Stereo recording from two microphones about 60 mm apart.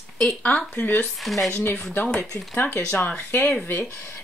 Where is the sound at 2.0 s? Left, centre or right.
Centre.